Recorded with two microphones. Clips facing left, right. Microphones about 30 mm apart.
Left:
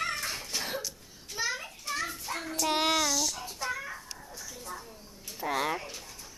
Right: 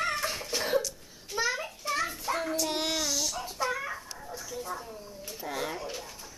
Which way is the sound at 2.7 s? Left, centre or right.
Centre.